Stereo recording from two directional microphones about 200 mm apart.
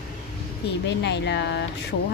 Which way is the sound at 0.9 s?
60° left (ahead or behind).